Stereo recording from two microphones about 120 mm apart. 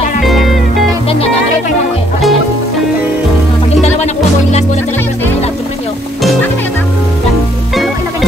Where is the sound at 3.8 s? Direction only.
65° left (ahead or behind).